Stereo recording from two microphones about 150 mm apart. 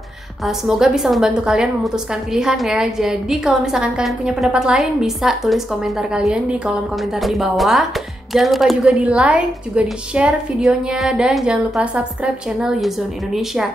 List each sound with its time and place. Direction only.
0.5 s a woman's voice: 5° right (ahead or behind)